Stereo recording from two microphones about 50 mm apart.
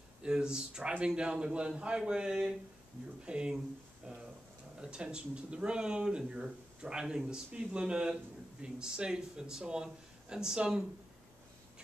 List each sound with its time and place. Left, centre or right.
0.2 s a man's voice: centre
4.7 s speech: centre